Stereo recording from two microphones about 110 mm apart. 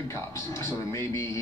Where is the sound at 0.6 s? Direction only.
25° left (ahead or behind).